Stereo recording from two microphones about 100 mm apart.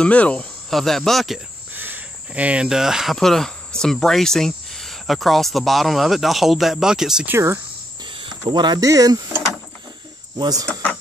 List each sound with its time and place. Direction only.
0.0 s speech: 15° left (ahead or behind)
0.7 s speech: 5° left (ahead or behind)
1.7 s speech: 20° right (ahead or behind)
7.2 s speech: 25° right (ahead or behind)
8.0 s cricket: 55° right (ahead or behind)
8.8 s speech: 35° right (ahead or behind)
10.3 s speech: 40° right (ahead or behind)
10.7 s speech: 15° left (ahead or behind)